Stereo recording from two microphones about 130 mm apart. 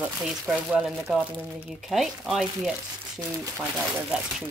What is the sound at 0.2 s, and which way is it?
Speech, 5° right (ahead or behind).